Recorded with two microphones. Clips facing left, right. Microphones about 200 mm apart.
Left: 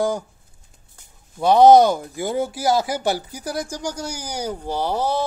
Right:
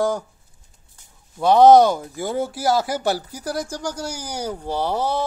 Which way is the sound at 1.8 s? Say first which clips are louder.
Left 1 dB; 10° left (ahead or behind).